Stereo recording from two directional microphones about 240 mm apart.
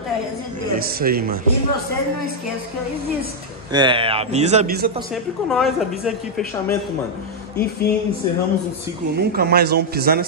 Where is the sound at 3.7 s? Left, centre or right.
Centre.